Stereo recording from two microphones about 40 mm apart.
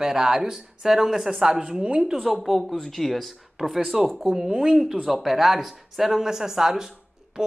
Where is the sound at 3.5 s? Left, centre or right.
Centre.